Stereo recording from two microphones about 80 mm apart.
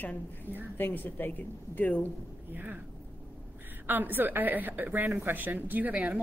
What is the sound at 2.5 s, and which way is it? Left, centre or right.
Speech, right.